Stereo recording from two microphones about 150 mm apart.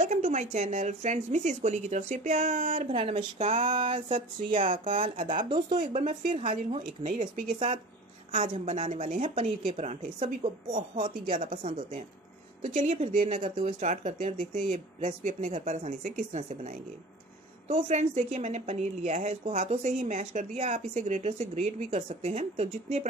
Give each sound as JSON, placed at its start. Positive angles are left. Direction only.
{"t": 0.0, "sound": "speech", "side_deg": -55}
{"t": 2.9, "sound": "speech", "side_deg": -35}
{"t": 5.8, "sound": "speech", "side_deg": -55}
{"t": 8.3, "sound": "speech", "side_deg": -55}